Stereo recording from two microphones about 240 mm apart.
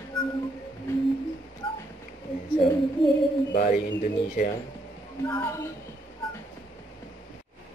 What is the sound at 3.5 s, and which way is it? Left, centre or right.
Speech, left.